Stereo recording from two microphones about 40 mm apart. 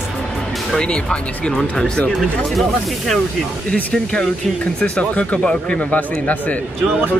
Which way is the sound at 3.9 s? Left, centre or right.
Centre.